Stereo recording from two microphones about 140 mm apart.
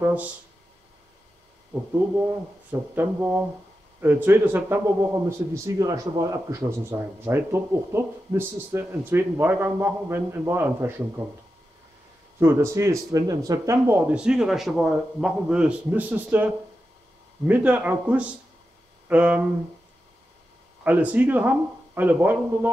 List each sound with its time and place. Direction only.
0.0 s a man's voice: 10° right (ahead or behind)
1.7 s a man's voice: 15° right (ahead or behind)
12.4 s a man's voice: 20° right (ahead or behind)
20.8 s a man's voice: 10° right (ahead or behind)